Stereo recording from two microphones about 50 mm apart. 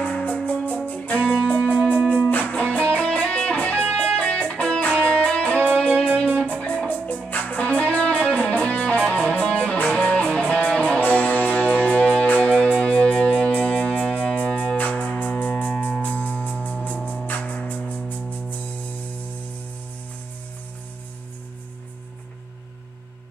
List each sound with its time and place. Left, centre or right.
0.0 s music: left
0.4 s music: centre
0.8 s music: left
1.2 s music: centre
2.2 s music: left
15.5 s music: centre
16.0 s music: left